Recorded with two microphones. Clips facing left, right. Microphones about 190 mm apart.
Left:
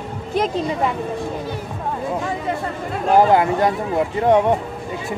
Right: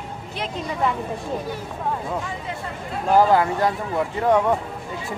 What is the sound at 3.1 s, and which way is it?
Speech, 20° left (ahead or behind).